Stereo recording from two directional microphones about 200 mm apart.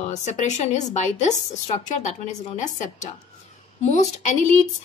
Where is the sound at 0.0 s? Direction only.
35° left (ahead or behind).